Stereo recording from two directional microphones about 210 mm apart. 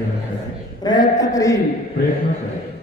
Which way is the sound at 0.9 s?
20° left (ahead or behind).